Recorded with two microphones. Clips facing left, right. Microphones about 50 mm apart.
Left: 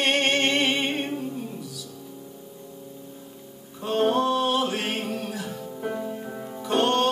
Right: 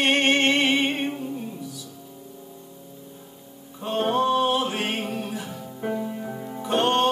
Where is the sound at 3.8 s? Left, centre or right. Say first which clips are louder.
Even; centre.